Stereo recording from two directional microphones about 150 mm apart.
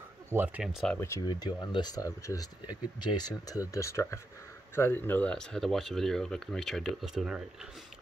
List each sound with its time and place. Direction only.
0.3 s speech: 15° right (ahead or behind)
0.9 s speech: 20° left (ahead or behind)
1.2 s speech: 30° left (ahead or behind); by 7.4 s centre (ahead or behind)